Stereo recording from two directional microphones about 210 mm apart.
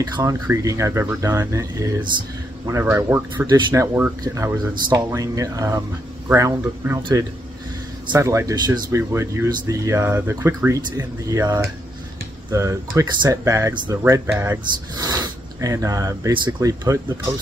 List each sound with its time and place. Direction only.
0.0 s speech: 15° right (ahead or behind)